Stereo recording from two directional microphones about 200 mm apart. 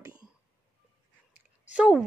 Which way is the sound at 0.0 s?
20° right (ahead or behind).